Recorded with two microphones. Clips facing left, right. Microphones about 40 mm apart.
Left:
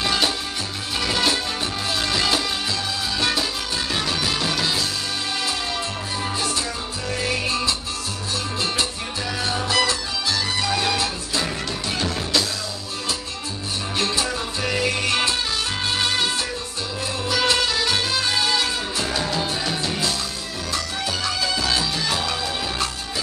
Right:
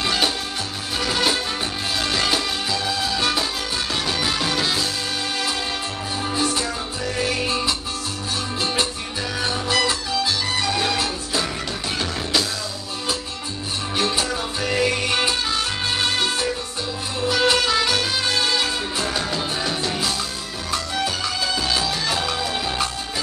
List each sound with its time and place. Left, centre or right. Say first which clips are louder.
0.0 s music: even; centre
2.0 s music: even; centre
9.4 s music: right 1 dB; centre
12.0 s music: even; centre
13.9 s music: right 1 dB; centre
17.5 s music: right 1 dB; centre
21.7 s music: right 1 dB; centre